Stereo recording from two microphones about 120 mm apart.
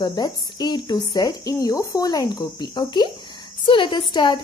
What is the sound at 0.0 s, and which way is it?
Speech, 35° left (ahead or behind).